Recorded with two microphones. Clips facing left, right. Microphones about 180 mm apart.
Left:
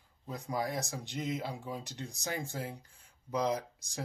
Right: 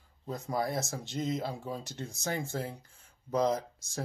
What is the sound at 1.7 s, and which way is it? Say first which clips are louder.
Speech: right 2 dB; 15° left (ahead or behind).